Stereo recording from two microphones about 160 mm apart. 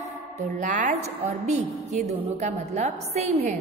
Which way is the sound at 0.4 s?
55° right (ahead or behind).